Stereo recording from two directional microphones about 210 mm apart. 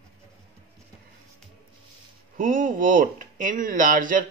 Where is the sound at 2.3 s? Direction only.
40° right (ahead or behind).